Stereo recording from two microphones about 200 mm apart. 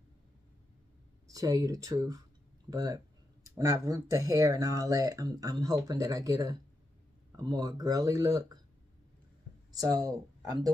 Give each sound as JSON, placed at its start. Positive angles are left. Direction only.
{"t": 1.2, "sound": "speech", "side_deg": -15}
{"t": 9.7, "sound": "speech", "side_deg": -20}